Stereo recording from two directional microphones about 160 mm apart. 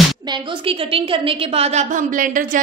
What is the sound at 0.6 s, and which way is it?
A woman's voice, 35° right (ahead or behind).